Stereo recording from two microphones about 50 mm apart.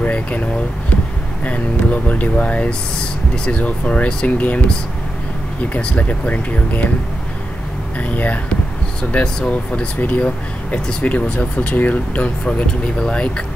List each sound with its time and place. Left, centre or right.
0.0 s speech: left
1.4 s speech: left
5.7 s speech: left
8.0 s speech: left
9.2 s speech: centre
9.9 s speech: left